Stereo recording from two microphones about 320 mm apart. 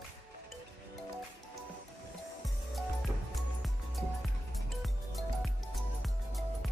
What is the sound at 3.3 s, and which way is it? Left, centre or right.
Music, centre.